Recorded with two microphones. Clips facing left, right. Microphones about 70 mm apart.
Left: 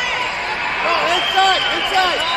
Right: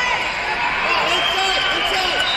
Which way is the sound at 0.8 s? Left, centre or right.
Left.